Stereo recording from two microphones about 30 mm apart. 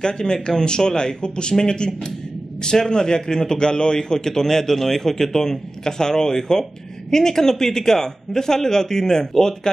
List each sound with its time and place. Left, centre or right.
0.0 s a man's voice: left